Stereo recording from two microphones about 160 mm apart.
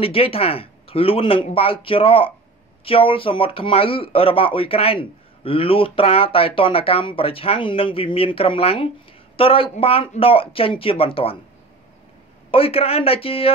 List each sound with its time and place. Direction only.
0.0 s speech: 35° left (ahead or behind)
12.4 s speech: 35° left (ahead or behind)